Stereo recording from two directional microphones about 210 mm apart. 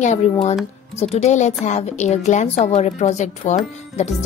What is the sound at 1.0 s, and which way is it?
Speech, 30° left (ahead or behind).